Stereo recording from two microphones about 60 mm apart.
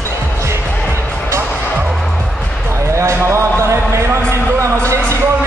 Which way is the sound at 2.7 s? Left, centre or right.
Right.